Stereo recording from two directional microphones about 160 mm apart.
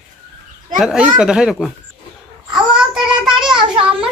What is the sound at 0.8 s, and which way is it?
Speech, 5° right (ahead or behind).